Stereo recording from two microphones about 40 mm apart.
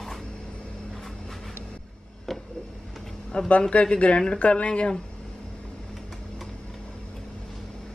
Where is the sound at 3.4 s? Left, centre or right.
Left.